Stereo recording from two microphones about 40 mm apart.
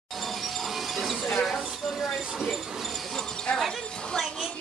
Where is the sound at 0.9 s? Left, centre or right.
Centre.